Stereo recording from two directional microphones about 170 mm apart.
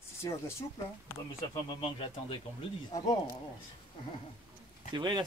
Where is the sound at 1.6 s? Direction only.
30° left (ahead or behind).